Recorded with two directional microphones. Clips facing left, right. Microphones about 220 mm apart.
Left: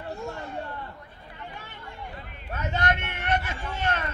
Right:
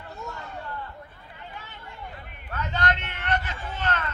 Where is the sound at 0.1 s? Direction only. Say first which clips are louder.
Left 3 dB; 30° left (ahead or behind).